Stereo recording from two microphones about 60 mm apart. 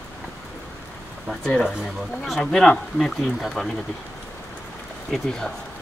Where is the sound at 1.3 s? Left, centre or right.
Centre.